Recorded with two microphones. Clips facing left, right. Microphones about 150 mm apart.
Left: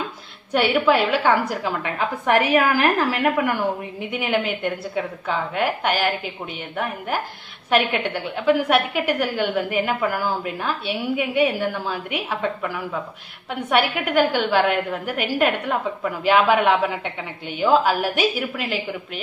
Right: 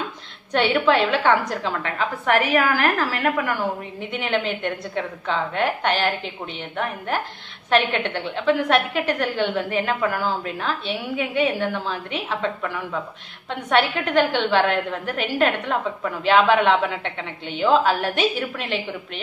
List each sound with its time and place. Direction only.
0.5 s a woman's voice: 10° left (ahead or behind)
7.7 s a woman's voice: 10° left (ahead or behind)